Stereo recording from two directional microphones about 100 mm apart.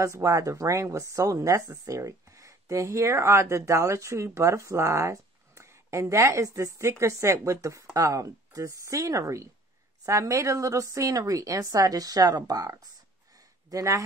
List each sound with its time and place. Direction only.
0.0 s speech: 30° right (ahead or behind)